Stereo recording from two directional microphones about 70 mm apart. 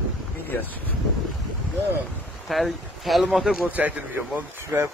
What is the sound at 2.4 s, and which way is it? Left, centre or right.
Speech, centre.